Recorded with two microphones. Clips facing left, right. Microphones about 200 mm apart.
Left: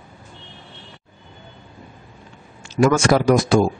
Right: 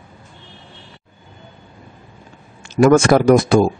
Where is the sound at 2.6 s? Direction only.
55° right (ahead or behind).